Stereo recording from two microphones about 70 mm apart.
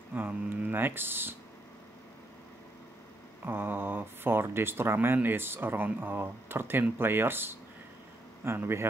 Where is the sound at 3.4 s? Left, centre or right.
Right.